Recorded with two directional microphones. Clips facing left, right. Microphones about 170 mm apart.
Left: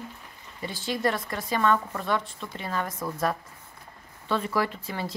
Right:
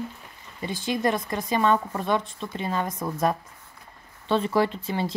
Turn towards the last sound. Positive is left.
turn(degrees=-25)  # may be behind; listen again after turning